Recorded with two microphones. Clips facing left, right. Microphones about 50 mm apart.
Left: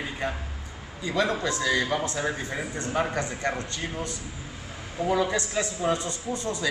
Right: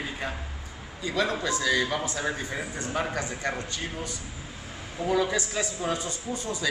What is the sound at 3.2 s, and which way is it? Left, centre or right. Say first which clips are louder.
Speech: left 2 dB; centre.